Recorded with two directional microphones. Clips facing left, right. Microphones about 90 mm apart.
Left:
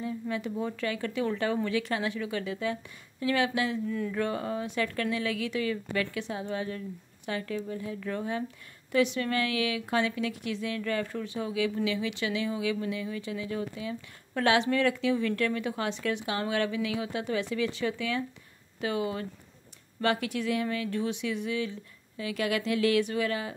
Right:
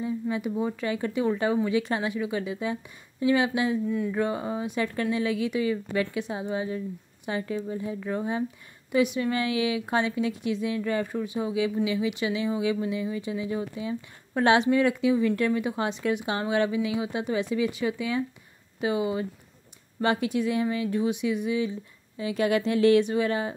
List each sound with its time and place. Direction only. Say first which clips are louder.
0.0 s speech: right 4 dB; 20° right (ahead or behind)